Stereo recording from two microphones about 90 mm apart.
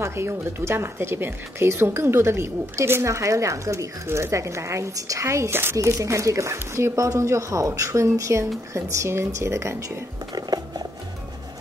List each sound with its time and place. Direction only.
0.0 s speech: 30° right (ahead or behind)
10.3 s music: 45° right (ahead or behind)